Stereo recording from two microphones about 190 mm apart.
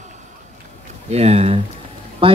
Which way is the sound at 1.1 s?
35° right (ahead or behind).